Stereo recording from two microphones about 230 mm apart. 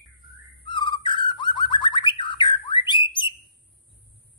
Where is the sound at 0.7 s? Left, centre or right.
Centre.